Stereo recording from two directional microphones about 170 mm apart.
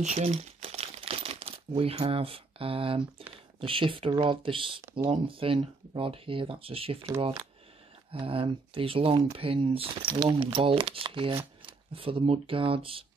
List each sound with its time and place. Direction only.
0.0 s crumpling: 40° right (ahead or behind)
3.6 s speech: 30° right (ahead or behind)